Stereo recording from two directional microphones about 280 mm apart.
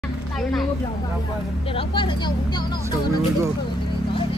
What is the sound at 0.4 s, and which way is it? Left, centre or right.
Speech, centre.